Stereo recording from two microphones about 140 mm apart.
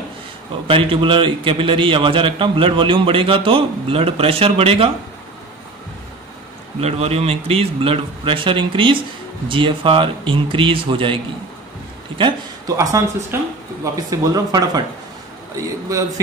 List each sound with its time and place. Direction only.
0.7 s a man's voice: 40° right (ahead or behind)
6.8 s a man's voice: 50° right (ahead or behind)
12.2 s a sound: 35° right (ahead or behind)
12.7 s speech: 20° right (ahead or behind)